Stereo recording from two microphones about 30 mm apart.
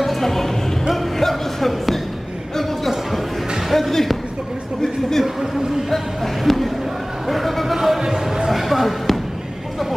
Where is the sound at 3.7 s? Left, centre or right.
Centre.